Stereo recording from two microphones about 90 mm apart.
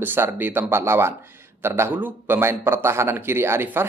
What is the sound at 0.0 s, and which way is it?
A man's voice, 20° right (ahead or behind).